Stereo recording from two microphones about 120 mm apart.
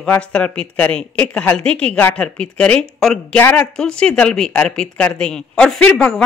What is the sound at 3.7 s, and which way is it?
A woman's voice, 5° left (ahead or behind).